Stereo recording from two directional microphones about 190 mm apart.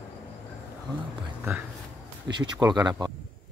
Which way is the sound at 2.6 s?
20° right (ahead or behind).